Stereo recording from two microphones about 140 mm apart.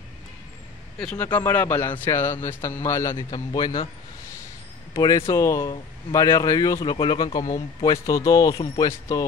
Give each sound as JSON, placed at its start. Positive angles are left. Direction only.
{"t": 0.9, "sound": "speech", "side_deg": 10}
{"t": 4.9, "sound": "speech", "side_deg": 25}
{"t": 6.8, "sound": "speech", "side_deg": 35}